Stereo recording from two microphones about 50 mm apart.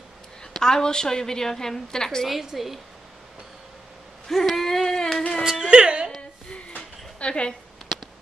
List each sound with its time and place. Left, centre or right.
0.5 s a woman's voice: centre
2.2 s a woman's voice: centre
4.3 s a sound: centre
5.4 s speech: centre
7.2 s speech: left